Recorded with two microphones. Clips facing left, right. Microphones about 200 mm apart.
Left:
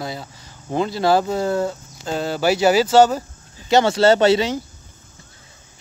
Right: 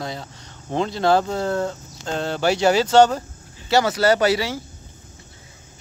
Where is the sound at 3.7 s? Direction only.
25° left (ahead or behind).